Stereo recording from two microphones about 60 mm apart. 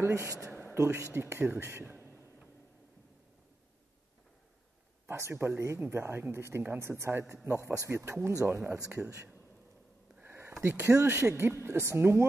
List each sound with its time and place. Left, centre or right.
0.0 s speech: right
5.0 s speech: right
10.2 s a sound: right
10.6 s speech: right
11.1 s speech: right